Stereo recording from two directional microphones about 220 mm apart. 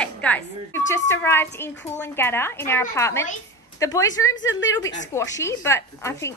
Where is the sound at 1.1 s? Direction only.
10° left (ahead or behind).